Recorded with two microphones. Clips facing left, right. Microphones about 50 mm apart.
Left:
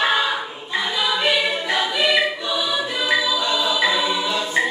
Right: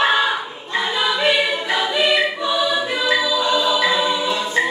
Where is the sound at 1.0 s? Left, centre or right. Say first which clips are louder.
Right 2 dB; centre.